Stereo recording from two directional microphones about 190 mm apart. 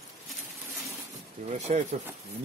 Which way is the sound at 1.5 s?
35° right (ahead or behind).